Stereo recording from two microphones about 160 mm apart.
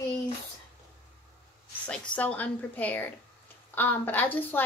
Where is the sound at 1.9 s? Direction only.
10° left (ahead or behind).